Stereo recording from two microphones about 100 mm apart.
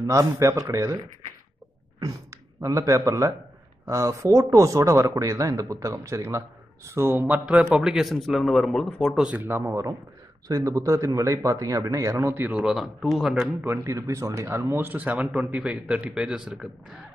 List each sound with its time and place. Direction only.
0.0 s speech: 30° right (ahead or behind)
2.6 s speech: 30° right (ahead or behind); by 9.3 s centre (ahead or behind)
9.3 s speech: 20° right (ahead or behind)
12.5 s speech: 5° right (ahead or behind)
13.7 s speech: 30° right (ahead or behind)
15.3 s a man's voice: 5° right (ahead or behind)